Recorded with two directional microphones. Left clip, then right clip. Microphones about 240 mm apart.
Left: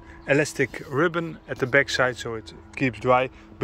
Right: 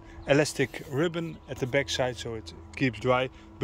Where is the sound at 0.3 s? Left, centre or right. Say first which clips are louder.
Left 2 dB; centre.